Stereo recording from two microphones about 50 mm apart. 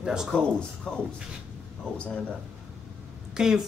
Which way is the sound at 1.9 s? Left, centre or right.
Left.